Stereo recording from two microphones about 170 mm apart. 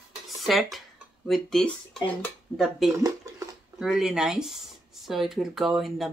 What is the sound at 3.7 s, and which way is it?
Speech, 5° right (ahead or behind).